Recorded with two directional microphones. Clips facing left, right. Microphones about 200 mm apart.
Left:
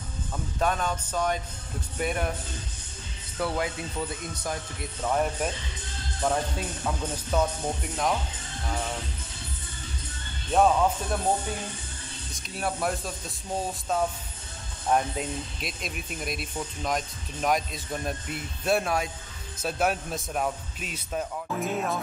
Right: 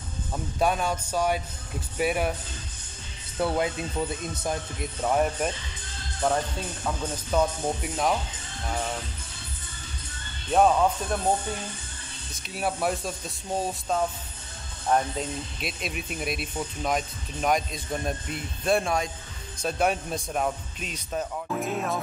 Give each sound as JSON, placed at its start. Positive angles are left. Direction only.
{"t": 0.3, "sound": "speech", "side_deg": -10}
{"t": 3.3, "sound": "speech", "side_deg": -25}
{"t": 5.1, "sound": "speech", "side_deg": -5}
{"t": 10.5, "sound": "speech", "side_deg": -5}
{"t": 12.4, "sound": "speech", "side_deg": -5}